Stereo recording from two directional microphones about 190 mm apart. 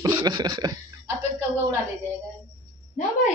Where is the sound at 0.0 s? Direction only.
20° right (ahead or behind).